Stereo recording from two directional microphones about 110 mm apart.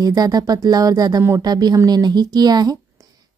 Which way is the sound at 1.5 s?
35° right (ahead or behind).